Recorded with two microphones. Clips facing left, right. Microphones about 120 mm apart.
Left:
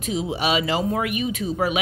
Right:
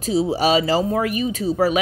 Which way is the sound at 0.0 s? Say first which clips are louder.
Right 6 dB; 35° right (ahead or behind).